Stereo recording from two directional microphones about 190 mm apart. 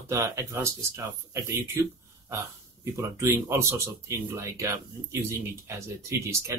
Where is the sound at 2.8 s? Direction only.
15° right (ahead or behind).